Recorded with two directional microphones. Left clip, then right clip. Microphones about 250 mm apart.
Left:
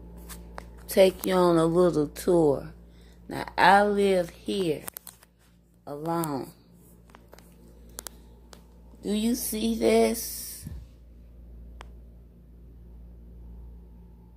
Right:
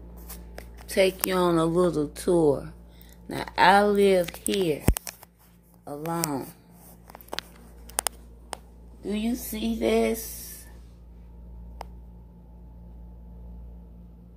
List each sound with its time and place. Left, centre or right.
0.8 s a woman's voice: centre
5.9 s a woman's voice: centre
9.0 s speech: left